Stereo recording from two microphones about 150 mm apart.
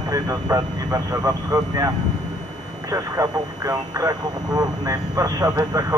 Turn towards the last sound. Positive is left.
turn(degrees=-25)  # may be behind; listen again after turning